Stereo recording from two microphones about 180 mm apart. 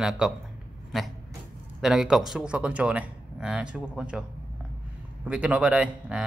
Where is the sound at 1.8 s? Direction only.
5° right (ahead or behind).